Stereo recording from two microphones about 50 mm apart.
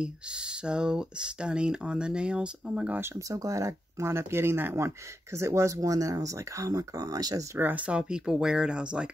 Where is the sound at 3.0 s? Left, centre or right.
Right.